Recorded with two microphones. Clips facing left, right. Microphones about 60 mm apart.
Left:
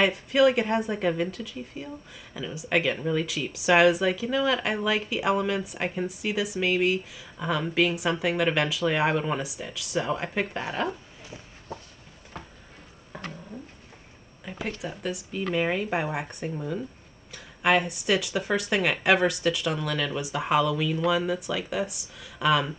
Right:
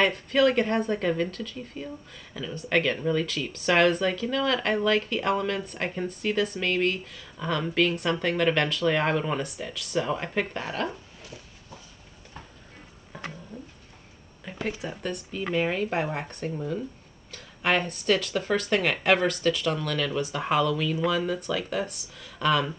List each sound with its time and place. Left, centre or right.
0.0 s speech: centre
11.7 s a sound: left
14.4 s speech: centre